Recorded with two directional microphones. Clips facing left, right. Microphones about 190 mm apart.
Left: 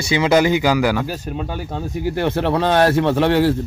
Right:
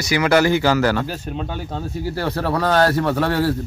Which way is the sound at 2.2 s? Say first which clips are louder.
Left 3 dB; 25° left (ahead or behind).